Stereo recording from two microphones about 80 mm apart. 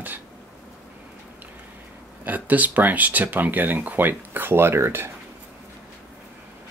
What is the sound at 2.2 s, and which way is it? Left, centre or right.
Speech, right.